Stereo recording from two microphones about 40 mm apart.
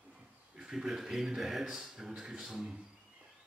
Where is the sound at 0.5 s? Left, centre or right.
Centre.